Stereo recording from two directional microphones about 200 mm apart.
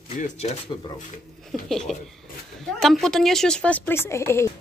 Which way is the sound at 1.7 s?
Centre (ahead or behind).